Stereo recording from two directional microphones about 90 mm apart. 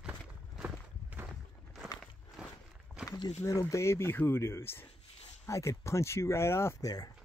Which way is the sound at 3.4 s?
35° left (ahead or behind).